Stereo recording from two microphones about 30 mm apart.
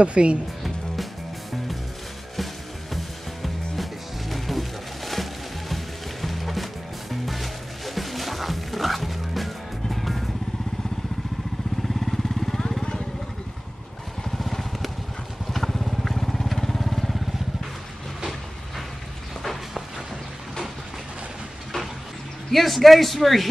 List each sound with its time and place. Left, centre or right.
0.0 s speech: right
2.9 s music: centre
11.9 s vehicle: centre
14.5 s vehicle: centre
22.5 s a man's voice: centre